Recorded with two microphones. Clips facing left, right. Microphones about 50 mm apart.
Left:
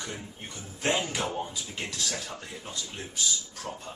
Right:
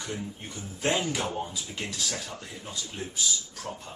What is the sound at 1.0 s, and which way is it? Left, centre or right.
Speech, centre.